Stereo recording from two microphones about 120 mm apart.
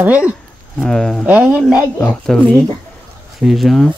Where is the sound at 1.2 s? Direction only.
10° right (ahead or behind).